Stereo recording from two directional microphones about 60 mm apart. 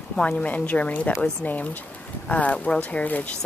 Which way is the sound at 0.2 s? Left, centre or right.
Left.